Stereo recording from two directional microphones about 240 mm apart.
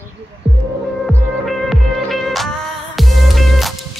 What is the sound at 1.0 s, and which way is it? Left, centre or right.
Music, centre.